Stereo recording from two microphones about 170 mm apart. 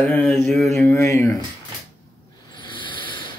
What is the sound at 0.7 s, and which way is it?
Speech, 10° left (ahead or behind).